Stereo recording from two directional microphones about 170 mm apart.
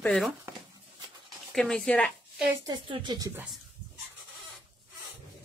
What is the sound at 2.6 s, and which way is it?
Speech, 30° right (ahead or behind).